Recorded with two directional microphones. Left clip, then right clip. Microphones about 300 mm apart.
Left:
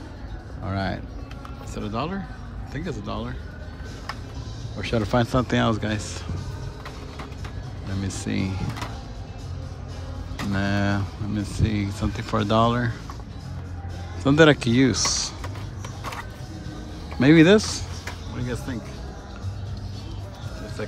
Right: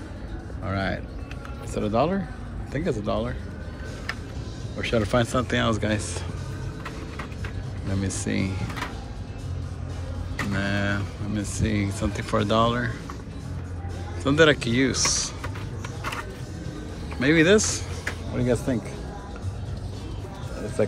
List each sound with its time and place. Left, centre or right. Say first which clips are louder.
0.7 s speech: right 1 dB; centre
4.7 s speech: even; centre
8.0 s speech: even; centre
10.5 s speech: left 2 dB; centre
14.2 s speech: left 2 dB; centre
17.2 s speech: left 3 dB; centre